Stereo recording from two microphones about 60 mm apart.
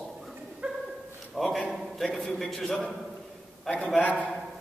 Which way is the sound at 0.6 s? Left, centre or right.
Centre.